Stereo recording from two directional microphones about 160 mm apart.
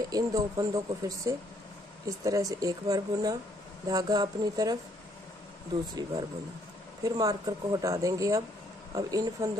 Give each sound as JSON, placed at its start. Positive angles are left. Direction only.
{"t": 0.0, "sound": "speech", "side_deg": -20}
{"t": 7.0, "sound": "speech", "side_deg": -20}